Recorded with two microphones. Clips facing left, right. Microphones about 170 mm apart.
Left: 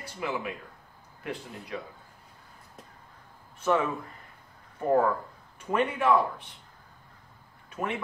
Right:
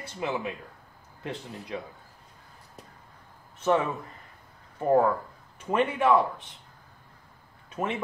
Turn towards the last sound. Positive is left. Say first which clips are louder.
# right 2 dB
turn(degrees=-25)  # may be behind; listen again after turning